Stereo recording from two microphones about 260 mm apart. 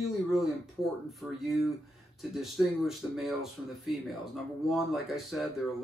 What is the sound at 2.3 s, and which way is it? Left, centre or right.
Speech, centre.